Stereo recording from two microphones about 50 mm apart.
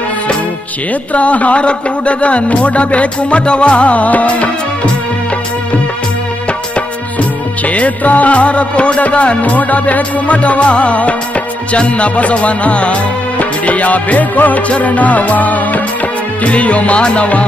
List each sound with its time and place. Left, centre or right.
1.1 s music: left
7.6 s music: left